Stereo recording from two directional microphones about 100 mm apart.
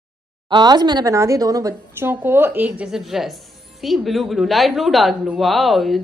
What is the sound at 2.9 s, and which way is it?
Speech, 5° right (ahead or behind).